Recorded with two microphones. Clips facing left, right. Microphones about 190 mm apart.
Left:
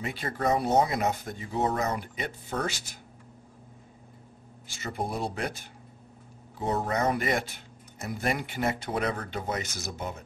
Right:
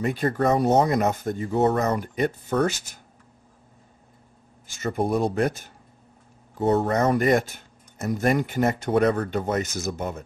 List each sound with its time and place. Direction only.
0.0 s speech: 45° right (ahead or behind)
4.7 s speech: 45° right (ahead or behind)
6.9 s speech: 45° right (ahead or behind)